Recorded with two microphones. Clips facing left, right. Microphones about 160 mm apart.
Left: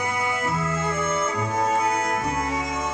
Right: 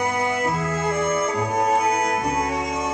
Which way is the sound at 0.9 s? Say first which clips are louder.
Right 6 dB; 40° right (ahead or behind).